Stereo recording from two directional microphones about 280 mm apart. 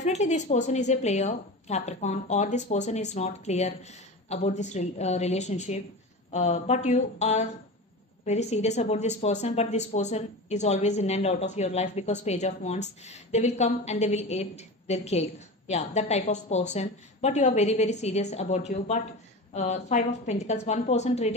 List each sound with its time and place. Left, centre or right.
0.0 s speech: left